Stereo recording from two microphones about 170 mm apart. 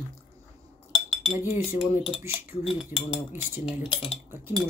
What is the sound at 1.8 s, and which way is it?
Speech, 5° right (ahead or behind).